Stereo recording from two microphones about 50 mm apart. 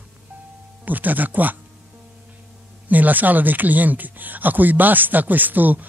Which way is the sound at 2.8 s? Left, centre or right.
Right.